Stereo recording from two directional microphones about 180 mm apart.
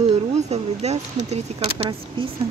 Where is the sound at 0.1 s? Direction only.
35° right (ahead or behind).